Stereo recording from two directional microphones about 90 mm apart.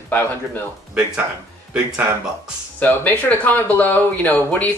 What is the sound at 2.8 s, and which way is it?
Speech, 20° left (ahead or behind).